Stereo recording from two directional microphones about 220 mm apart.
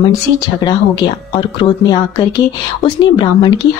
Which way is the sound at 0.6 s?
20° left (ahead or behind).